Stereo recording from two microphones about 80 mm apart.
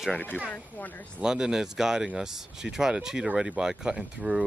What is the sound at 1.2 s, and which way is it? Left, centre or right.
Speech, centre.